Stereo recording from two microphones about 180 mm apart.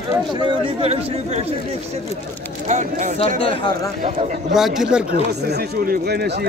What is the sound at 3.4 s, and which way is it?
Speech, 30° left (ahead or behind).